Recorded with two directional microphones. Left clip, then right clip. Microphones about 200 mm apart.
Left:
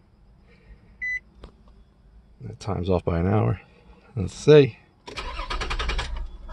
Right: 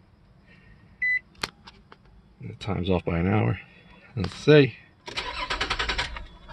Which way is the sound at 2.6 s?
5° left (ahead or behind).